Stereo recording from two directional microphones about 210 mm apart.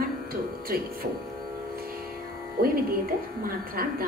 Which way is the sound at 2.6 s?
45° right (ahead or behind).